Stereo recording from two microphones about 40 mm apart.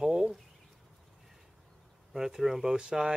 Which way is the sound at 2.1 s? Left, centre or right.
Centre.